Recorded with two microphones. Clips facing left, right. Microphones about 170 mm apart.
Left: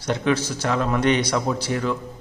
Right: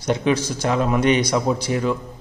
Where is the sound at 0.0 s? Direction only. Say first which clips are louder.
Right 2 dB; 15° right (ahead or behind).